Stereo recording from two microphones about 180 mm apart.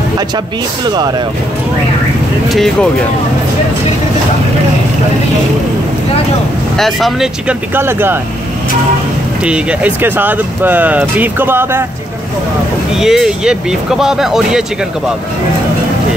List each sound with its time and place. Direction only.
0.8 s speech: 20° right (ahead or behind)
2.5 s speech: centre (ahead or behind)
6.8 s speech: centre (ahead or behind)
9.4 s speech: 5° right (ahead or behind)
12.9 s speech: 5° right (ahead or behind)